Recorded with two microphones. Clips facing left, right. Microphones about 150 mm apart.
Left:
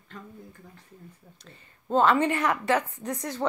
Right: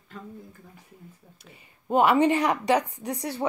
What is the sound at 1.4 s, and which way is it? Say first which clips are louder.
A woman's voice: even; 10° right (ahead or behind).